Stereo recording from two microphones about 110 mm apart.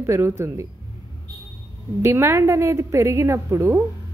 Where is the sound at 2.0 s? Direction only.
25° right (ahead or behind).